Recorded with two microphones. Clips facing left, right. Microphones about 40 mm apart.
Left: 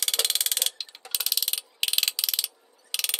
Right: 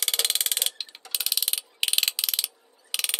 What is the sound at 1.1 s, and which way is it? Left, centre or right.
Mechanisms, centre.